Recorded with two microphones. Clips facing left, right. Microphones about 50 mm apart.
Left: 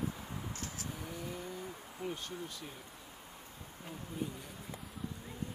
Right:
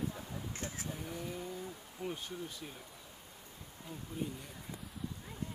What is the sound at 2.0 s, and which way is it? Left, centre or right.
Speech, centre.